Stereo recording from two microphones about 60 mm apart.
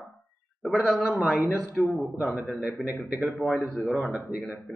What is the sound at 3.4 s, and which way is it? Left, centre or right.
Speech, centre.